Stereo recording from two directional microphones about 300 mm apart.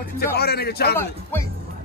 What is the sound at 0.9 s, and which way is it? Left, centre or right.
Speech, centre.